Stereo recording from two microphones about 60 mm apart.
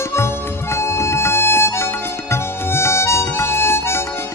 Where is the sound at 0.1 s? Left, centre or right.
Left.